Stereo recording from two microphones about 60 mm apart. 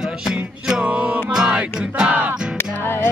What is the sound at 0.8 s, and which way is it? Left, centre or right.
Music, right.